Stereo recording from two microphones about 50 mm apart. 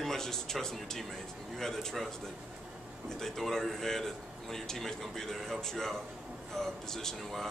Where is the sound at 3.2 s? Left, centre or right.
Centre.